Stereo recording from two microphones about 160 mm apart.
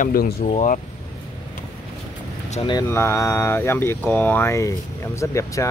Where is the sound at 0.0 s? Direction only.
65° left (ahead or behind).